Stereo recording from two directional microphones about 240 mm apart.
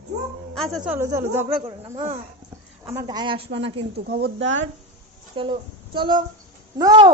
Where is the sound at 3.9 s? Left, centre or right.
Right.